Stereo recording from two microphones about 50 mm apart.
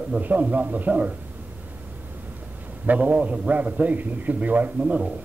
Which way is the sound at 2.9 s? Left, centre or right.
Right.